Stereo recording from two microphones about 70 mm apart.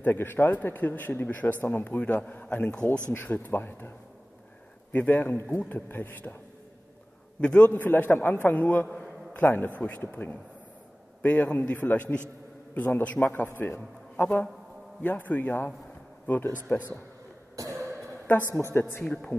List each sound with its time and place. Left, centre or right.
0.0 s speech: left
4.9 s speech: left
7.3 s a man's voice: centre
17.6 s cough: right
18.5 s a woman's voice: left